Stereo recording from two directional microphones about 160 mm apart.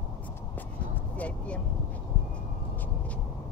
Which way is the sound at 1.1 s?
10° left (ahead or behind).